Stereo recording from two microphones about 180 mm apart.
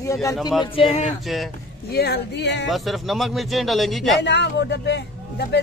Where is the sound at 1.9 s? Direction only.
60° left (ahead or behind).